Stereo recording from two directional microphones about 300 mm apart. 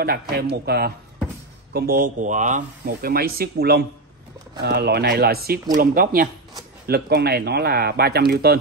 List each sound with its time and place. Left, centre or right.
0.0 s speech: right